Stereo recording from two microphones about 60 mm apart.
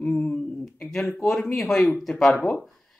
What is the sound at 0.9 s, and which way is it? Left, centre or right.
Speech, centre.